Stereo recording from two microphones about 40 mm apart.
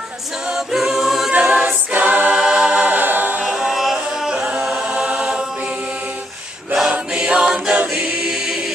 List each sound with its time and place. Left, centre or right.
0.7 s a capella: centre
1.3 s choir: right
2.3 s choir: right
2.9 s choir: right
3.4 s music: centre
4.4 s a capella: right
6.9 s choir: right
7.3 s a capella: centre
7.9 s choir: right